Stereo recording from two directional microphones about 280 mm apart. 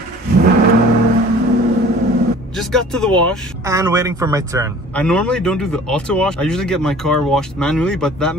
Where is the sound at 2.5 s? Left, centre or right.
Centre.